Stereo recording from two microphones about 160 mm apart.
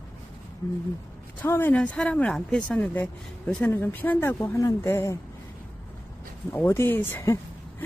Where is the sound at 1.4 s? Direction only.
10° left (ahead or behind).